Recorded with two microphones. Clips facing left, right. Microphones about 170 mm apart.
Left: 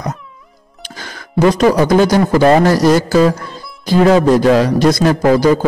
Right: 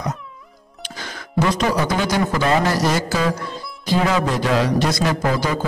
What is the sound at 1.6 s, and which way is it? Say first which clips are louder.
A man's voice: left 10 dB; 45° left (ahead or behind).